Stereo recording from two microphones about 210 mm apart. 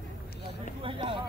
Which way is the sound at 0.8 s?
25° right (ahead or behind).